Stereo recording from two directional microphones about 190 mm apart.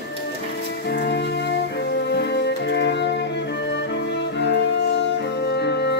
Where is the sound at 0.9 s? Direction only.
60° left (ahead or behind).